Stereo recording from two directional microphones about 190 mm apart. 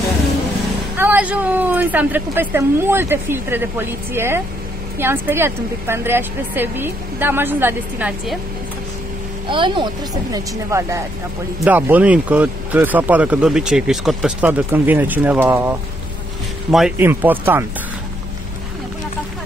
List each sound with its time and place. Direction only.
0.9 s speech: 10° right (ahead or behind)
9.5 s speech: 25° right (ahead or behind)
10.3 s speech: 15° right (ahead or behind)
16.7 s speech: 5° right (ahead or behind)